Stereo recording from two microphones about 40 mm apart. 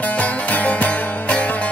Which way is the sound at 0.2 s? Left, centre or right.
Left.